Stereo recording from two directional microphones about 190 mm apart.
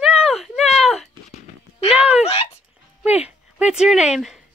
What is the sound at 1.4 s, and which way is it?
Clip-clop, 30° left (ahead or behind).